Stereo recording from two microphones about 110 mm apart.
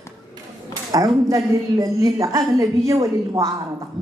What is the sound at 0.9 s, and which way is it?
A woman's voice, 30° right (ahead or behind).